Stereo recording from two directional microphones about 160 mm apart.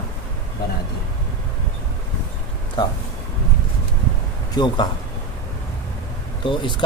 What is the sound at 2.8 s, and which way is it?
Speech, 25° left (ahead or behind).